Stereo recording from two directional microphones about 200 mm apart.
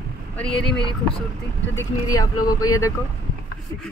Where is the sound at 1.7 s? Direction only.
20° left (ahead or behind).